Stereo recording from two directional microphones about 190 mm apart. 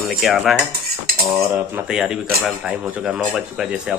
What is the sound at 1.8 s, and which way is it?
Speech, 5° right (ahead or behind).